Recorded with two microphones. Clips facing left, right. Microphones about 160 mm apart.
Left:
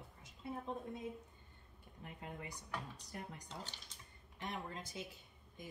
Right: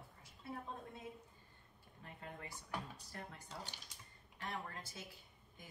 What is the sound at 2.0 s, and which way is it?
Speech, 15° left (ahead or behind).